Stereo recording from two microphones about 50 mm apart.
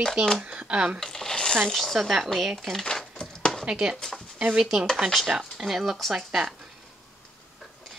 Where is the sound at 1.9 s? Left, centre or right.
Centre.